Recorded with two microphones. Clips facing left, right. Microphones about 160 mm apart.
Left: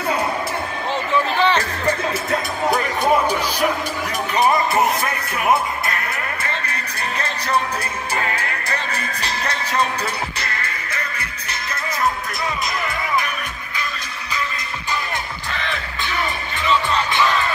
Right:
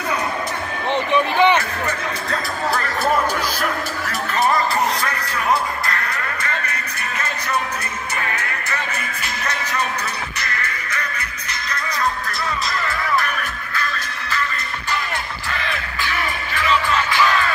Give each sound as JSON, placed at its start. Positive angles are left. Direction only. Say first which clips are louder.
{"t": 1.1, "sound": "music", "louder": "right 2 dB", "side_deg": -15}
{"t": 2.3, "sound": "speech", "louder": "left 2 dB", "side_deg": 20}
{"t": 4.3, "sound": "music", "louder": "left 1 dB", "side_deg": 20}
{"t": 12.8, "sound": "music", "louder": "right 2 dB", "side_deg": 15}
{"t": 16.9, "sound": "music", "louder": "even", "side_deg": 20}